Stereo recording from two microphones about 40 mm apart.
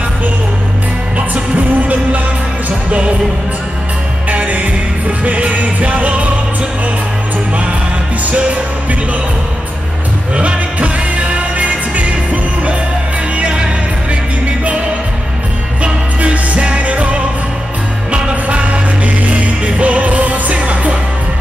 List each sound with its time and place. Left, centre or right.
2.9 s music: right
4.3 s music: right
10.3 s music: right
15.8 s music: right
18.3 s music: right